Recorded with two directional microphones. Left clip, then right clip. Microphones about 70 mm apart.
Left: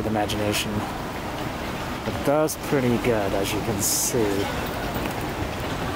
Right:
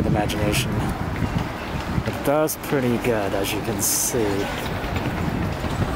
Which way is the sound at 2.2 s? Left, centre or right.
Centre.